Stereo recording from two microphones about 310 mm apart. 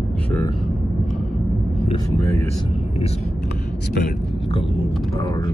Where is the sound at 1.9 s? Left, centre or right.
Centre.